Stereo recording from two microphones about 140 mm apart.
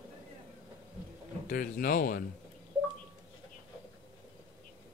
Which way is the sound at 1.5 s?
90° left.